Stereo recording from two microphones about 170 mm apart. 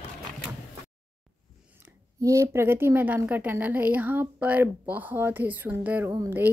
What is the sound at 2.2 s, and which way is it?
A woman's voice, 20° right (ahead or behind).